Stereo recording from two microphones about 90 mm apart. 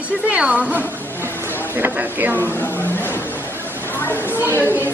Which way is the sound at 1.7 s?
20° right (ahead or behind).